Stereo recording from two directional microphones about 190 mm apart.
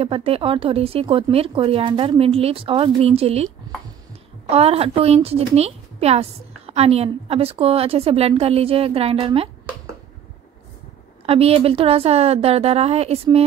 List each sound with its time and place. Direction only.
0.0 s speech: 30° right (ahead or behind)
4.5 s a woman's voice: 30° right (ahead or behind)
11.2 s a woman's voice: 30° right (ahead or behind)